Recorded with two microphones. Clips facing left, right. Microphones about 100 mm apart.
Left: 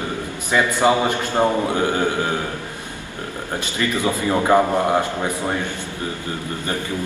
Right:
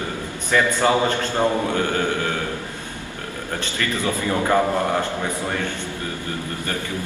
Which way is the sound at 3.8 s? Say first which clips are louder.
Left 3 dB; 20° left (ahead or behind).